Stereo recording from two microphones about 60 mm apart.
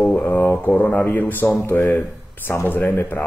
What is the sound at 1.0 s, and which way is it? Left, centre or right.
Speech, left.